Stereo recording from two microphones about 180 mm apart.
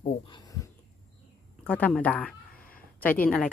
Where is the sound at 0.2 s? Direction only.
25° left (ahead or behind).